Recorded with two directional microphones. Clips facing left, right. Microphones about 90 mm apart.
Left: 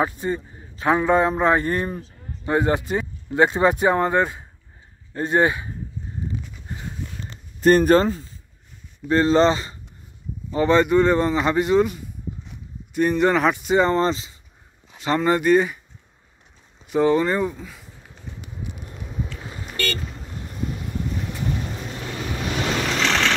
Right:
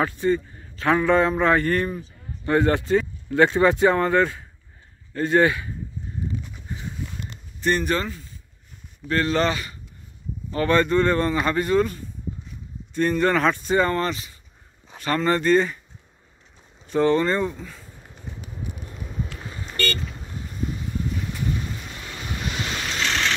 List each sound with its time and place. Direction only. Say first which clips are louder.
0.0 s a man's voice: right 2 dB; 20° left (ahead or behind)
7.6 s a man's voice: left 8 dB; 40° left (ahead or behind)
10.5 s speech: left 3 dB; 15° left (ahead or behind)
16.8 s speech: left 1 dB; 15° left (ahead or behind)
18.8 s vehicle: left 2 dB; 5° left (ahead or behind)
19.4 s vehicle: even; 20° left (ahead or behind)
22.7 s waves: left 6 dB; 90° left